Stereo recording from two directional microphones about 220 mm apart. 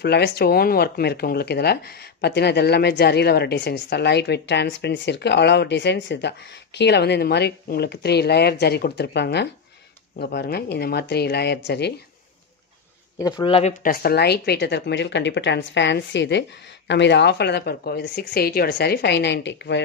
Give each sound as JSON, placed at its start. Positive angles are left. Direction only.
{"t": 0.0, "sound": "speech", "side_deg": 50}
{"t": 13.2, "sound": "speech", "side_deg": 20}
{"t": 13.8, "sound": "speech", "side_deg": 45}